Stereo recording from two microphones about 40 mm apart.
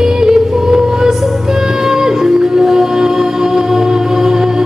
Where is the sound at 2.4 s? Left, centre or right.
Centre.